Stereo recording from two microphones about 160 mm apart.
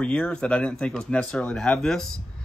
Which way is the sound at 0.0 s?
5° left (ahead or behind).